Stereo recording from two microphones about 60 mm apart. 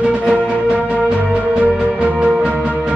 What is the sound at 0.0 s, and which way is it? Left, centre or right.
Music, centre.